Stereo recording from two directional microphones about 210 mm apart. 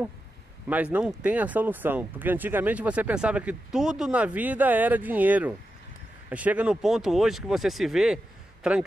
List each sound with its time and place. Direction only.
0.7 s speech: 5° right (ahead or behind)